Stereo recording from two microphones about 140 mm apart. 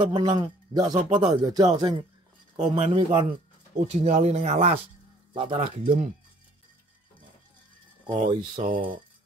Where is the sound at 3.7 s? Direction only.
55° right (ahead or behind).